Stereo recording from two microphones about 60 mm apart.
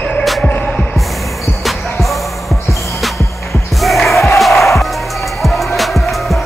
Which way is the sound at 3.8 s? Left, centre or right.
Centre.